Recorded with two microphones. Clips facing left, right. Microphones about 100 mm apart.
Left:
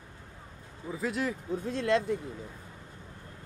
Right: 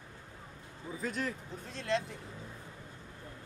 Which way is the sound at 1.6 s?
50° left (ahead or behind).